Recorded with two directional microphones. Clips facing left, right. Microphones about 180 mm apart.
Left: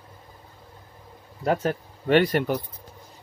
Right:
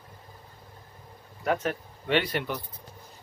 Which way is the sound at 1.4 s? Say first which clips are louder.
Left 4 dB; 35° left (ahead or behind).